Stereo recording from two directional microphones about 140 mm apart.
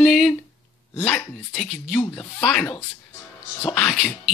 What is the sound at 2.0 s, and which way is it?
Speech, 15° left (ahead or behind).